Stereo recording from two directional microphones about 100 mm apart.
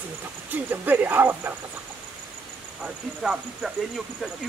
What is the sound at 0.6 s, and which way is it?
Speech, 20° right (ahead or behind).